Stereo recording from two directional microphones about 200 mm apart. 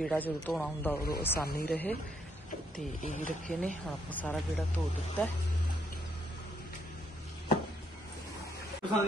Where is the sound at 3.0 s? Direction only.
40° left (ahead or behind).